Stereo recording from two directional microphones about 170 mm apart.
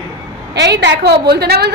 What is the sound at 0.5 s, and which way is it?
A woman's voice, 90° right.